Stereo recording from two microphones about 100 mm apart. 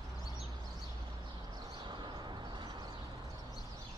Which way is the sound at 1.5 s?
45° right (ahead or behind).